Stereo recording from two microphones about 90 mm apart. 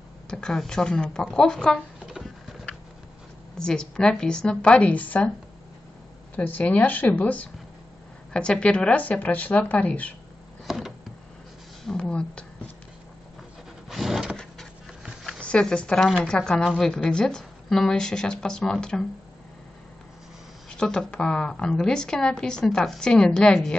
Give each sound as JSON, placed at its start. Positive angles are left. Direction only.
{"t": 0.3, "sound": "a woman's voice", "side_deg": 5}
{"t": 2.0, "sound": "a sound", "side_deg": -5}
{"t": 3.5, "sound": "a woman's voice", "side_deg": 10}
{"t": 6.3, "sound": "a woman's voice", "side_deg": 20}
{"t": 12.0, "sound": "a woman's voice", "side_deg": 10}
{"t": 13.8, "sound": "vehicle", "side_deg": 0}
{"t": 14.3, "sound": "dog", "side_deg": 5}
{"t": 15.2, "sound": "a woman's voice", "side_deg": 10}
{"t": 20.7, "sound": "a woman's voice", "side_deg": 10}